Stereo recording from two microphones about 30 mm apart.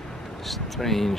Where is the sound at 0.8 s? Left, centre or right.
Centre.